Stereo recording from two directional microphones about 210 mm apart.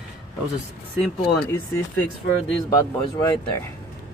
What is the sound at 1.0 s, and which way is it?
Speech, 10° left (ahead or behind).